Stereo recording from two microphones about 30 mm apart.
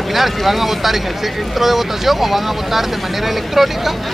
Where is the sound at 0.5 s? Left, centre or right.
Centre.